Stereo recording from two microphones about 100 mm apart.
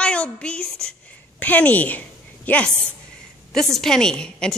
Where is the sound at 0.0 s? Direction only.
10° left (ahead or behind).